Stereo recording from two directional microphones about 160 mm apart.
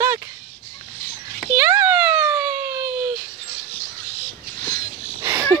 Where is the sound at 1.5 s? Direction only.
15° right (ahead or behind).